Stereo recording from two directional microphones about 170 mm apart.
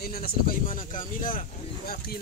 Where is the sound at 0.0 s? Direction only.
60° left (ahead or behind).